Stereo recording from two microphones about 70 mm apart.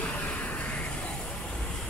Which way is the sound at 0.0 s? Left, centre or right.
Centre.